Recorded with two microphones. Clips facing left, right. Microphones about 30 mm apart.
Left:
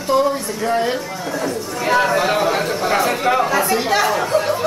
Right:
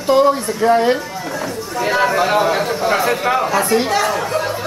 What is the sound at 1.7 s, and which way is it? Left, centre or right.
Speech, centre.